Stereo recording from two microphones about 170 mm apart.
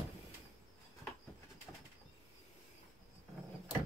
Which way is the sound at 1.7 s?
15° left (ahead or behind).